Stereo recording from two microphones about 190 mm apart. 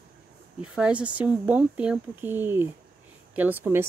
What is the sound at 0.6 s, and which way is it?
A woman's voice, 5° right (ahead or behind).